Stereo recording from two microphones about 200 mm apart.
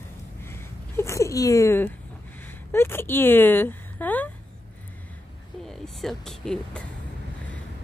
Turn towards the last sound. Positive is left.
turn(degrees=5)  # may be behind; listen again after turning